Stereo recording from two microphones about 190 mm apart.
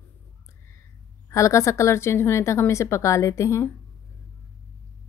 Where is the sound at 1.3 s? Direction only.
15° left (ahead or behind).